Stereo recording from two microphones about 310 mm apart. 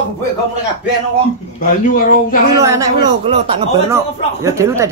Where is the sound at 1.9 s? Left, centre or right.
Left.